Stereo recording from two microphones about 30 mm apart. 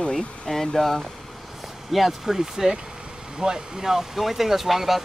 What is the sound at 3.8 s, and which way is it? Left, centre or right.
Speech, centre.